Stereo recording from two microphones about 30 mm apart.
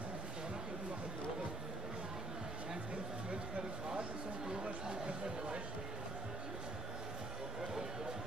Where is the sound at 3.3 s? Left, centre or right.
Right.